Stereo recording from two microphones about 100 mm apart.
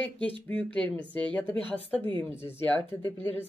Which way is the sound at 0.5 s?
15° left (ahead or behind).